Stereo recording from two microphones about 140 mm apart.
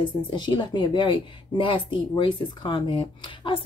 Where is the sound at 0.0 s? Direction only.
35° left (ahead or behind).